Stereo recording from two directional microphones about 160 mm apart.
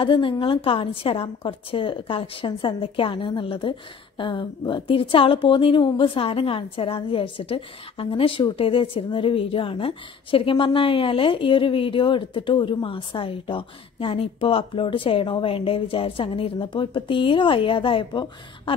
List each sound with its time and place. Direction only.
0.0 s a woman's voice: 30° left (ahead or behind)